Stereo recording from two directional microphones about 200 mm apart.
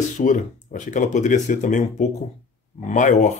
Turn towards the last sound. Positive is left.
turn(degrees=40)  # may be behind; listen again after turning